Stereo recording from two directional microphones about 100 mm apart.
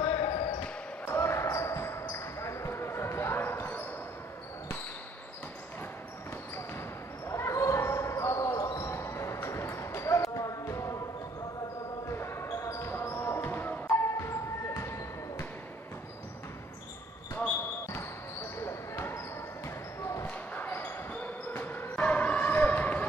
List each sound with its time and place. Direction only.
0.0 s basketball bounce: 50° left (ahead or behind)
1.1 s basketball bounce: 25° left (ahead or behind)
7.2 s basketball bounce: 30° left (ahead or behind)
12.1 s basketball bounce: 25° left (ahead or behind)
18.6 s basketball bounce: 25° left (ahead or behind)
20.2 s basketball bounce: 20° left (ahead or behind)
21.9 s a sound: 15° left (ahead or behind)